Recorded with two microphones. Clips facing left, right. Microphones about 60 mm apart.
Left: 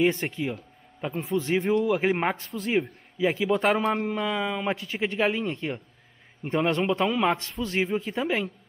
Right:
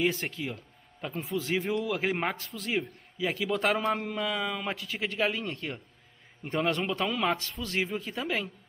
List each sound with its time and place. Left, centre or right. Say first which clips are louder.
0.0 s a man's voice: left 5 dB; centre